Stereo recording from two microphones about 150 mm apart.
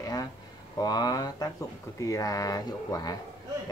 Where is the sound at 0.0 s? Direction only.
25° left (ahead or behind).